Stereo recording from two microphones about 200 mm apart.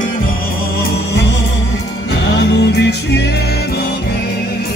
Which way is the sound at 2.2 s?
60° left (ahead or behind).